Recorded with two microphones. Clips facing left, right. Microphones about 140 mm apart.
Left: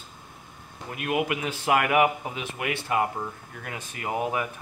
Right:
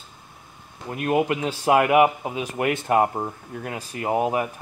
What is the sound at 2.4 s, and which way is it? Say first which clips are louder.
Speech: right 8 dB; 40° right (ahead or behind).